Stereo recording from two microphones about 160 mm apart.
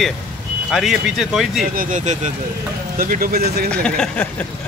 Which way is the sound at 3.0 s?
60° right (ahead or behind).